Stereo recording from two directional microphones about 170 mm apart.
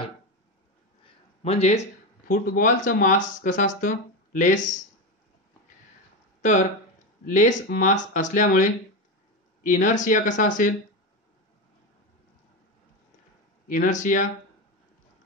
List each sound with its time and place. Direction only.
1.4 s a sound: 40° left (ahead or behind)
2.5 s speech: 50° left (ahead or behind)
7.2 s speech: 45° left (ahead or behind)
13.7 s speech: 50° left (ahead or behind)